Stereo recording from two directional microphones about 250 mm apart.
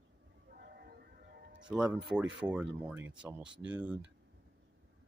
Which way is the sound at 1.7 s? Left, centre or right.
Centre.